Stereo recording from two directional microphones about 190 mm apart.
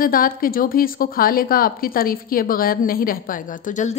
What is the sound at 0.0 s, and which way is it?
A woman's voice, 50° left (ahead or behind).